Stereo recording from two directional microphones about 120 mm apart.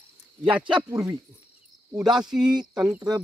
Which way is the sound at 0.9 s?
25° right (ahead or behind).